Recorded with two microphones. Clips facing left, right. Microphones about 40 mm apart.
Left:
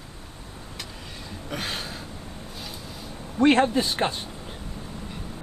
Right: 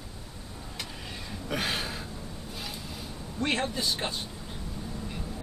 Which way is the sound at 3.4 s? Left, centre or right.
Left.